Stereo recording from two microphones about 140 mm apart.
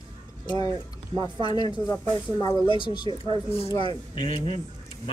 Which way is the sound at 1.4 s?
30° left (ahead or behind).